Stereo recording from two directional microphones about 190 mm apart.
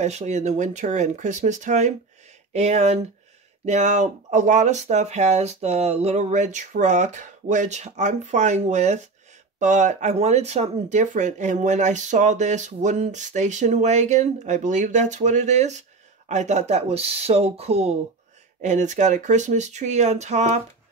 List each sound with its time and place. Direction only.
0.0 s speech: 35° right (ahead or behind)